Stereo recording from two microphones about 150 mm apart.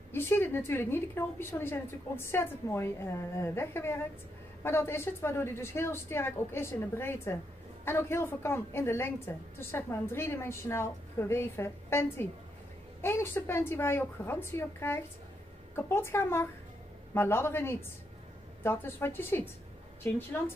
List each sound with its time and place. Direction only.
0.1 s a woman's voice: 15° left (ahead or behind)